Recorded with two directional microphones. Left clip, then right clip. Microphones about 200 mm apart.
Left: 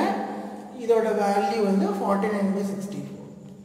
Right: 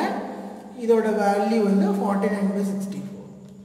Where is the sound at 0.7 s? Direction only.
15° right (ahead or behind).